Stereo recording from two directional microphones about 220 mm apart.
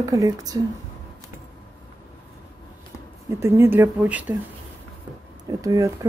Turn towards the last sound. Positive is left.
turn(degrees=-15)  # may be behind; listen again after turning